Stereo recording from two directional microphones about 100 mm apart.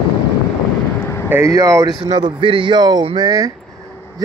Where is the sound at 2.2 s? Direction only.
60° right (ahead or behind).